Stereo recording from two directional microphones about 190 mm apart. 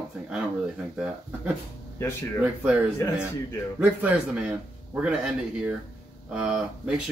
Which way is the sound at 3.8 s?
5° right (ahead or behind).